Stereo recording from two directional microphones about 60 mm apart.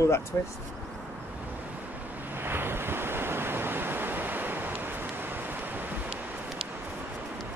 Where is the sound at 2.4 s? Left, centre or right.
Right.